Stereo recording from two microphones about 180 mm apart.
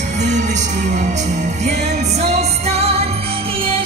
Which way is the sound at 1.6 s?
40° right (ahead or behind).